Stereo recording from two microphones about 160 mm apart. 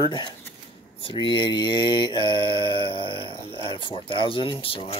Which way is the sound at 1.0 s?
30° left (ahead or behind).